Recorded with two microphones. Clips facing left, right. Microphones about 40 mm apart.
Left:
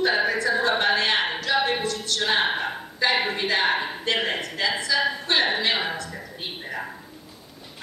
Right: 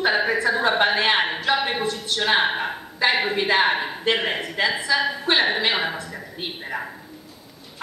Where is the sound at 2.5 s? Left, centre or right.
Centre.